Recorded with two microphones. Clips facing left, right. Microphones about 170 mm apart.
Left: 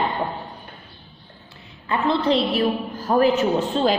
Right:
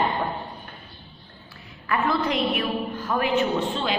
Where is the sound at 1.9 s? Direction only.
30° left (ahead or behind).